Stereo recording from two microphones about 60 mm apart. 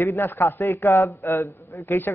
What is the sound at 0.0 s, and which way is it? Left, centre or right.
Speech, left.